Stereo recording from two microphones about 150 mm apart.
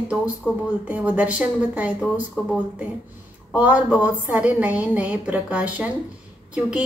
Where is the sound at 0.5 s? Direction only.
25° left (ahead or behind).